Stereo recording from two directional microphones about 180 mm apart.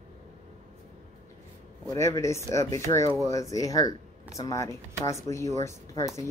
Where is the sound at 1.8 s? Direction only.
15° left (ahead or behind).